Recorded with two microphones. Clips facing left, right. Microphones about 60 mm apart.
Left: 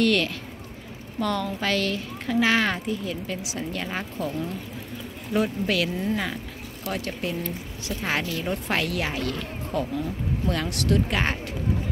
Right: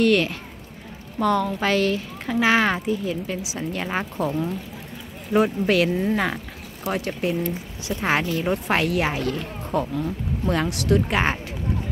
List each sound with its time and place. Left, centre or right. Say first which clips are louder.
0.0 s a child's voice: right 3 dB; centre
3.8 s speech: right 5 dB; right
6.8 s speech: right 5 dB; right
10.7 s a child's voice: right 3 dB; centre